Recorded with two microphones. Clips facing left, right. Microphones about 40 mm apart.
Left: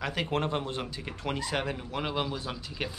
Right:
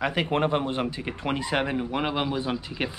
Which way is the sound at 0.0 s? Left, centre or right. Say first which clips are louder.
Right 6 dB; right.